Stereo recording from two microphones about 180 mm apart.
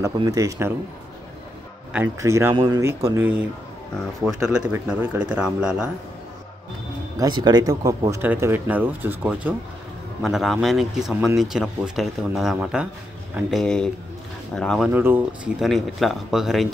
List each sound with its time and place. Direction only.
0.0 s speech: 20° right (ahead or behind)
2.1 s speech: 15° right (ahead or behind)
2.8 s speech: 15° right (ahead or behind)
7.2 s speech: 25° right (ahead or behind); by 14.9 s 5° left (ahead or behind)
14.9 s speech: 10° right (ahead or behind)